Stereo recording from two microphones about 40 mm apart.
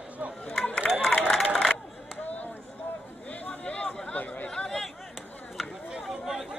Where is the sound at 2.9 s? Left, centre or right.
Left.